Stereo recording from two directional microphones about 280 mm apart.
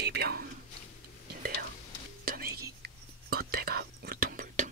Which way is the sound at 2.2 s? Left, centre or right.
Right.